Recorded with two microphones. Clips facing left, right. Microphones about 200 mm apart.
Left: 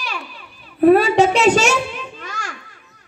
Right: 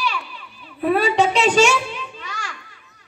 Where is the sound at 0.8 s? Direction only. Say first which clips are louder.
Left 6 dB; 45° left (ahead or behind).